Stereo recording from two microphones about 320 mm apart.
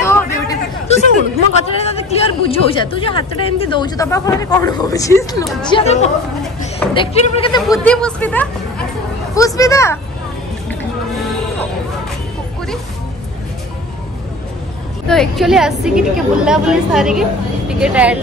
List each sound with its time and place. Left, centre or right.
0.0 s chatter: centre
1.6 s speech: centre
7.7 s a woman's voice: centre
15.0 s a woman's voice: centre